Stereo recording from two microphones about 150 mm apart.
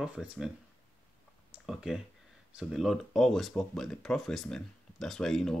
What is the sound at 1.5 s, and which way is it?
Speech, 5° right (ahead or behind).